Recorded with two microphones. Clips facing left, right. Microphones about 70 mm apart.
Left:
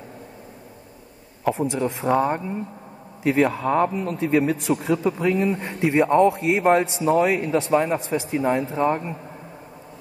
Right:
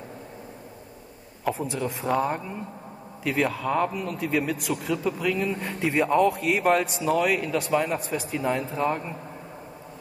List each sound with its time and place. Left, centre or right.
1.5 s a man's voice: left
3.6 s a man's voice: left
5.8 s a man's voice: centre